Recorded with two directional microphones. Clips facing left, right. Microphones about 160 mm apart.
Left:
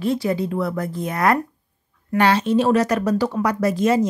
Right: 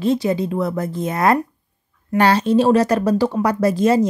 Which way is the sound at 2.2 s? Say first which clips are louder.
Right 2 dB; 35° right (ahead or behind).